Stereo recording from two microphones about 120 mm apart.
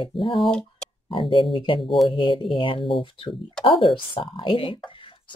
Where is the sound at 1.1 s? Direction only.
45° left (ahead or behind).